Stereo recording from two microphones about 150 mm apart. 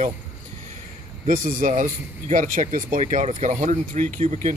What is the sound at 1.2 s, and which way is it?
Speech, 60° right (ahead or behind).